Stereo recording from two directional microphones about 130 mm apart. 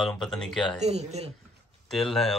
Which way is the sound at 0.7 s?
55° right (ahead or behind).